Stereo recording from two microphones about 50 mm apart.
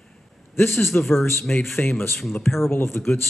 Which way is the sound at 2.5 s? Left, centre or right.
Left.